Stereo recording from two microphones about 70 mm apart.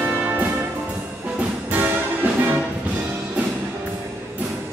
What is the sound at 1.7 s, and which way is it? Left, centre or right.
Music, right.